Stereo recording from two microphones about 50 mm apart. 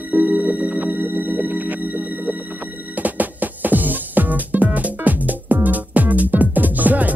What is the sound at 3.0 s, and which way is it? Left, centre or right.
Music, right.